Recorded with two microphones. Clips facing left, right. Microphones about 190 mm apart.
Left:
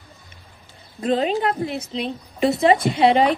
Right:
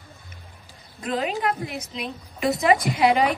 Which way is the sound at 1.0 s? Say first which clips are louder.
Left 5 dB; 30° left (ahead or behind).